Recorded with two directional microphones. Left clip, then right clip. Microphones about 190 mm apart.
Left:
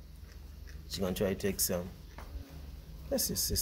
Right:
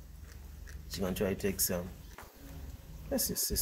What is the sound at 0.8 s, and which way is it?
Speech, 25° left (ahead or behind).